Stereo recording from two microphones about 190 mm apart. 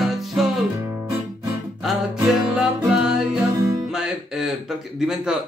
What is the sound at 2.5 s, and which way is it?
Music, 5° right (ahead or behind).